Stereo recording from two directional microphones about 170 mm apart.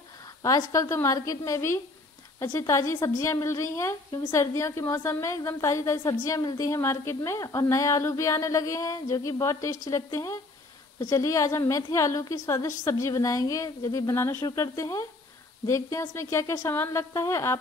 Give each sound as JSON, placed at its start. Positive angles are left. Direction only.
{"t": 0.4, "sound": "a woman's voice", "side_deg": 20}